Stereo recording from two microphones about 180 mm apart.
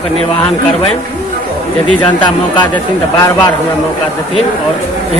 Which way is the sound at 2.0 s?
25° left (ahead or behind).